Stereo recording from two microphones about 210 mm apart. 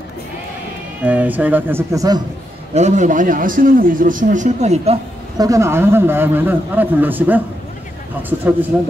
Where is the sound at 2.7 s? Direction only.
35° right (ahead or behind).